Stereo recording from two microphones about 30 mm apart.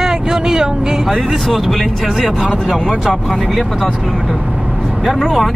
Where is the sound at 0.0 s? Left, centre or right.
Centre.